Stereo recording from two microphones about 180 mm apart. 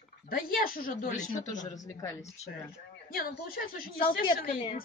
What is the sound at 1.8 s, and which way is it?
Speech, 20° left (ahead or behind).